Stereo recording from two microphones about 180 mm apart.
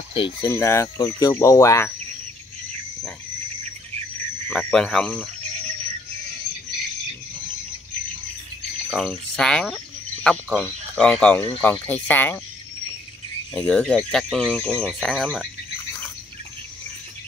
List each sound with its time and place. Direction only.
0.1 s speech: 30° left (ahead or behind)
0.5 s speech: 15° left (ahead or behind)
4.5 s speech: 5° left (ahead or behind)
8.9 s speech: centre (ahead or behind)
13.6 s speech: 5° left (ahead or behind)